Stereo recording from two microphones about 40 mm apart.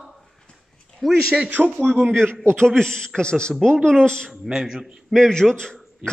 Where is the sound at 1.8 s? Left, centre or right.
Right.